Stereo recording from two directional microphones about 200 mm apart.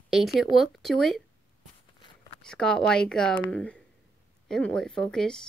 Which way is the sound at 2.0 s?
25° left (ahead or behind).